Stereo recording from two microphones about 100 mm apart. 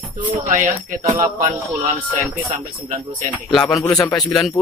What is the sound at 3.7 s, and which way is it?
Speech, 35° left (ahead or behind).